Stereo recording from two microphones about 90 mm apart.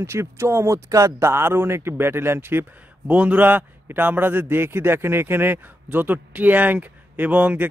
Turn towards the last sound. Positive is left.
turn(degrees=-15)  # may be behind; listen again after turning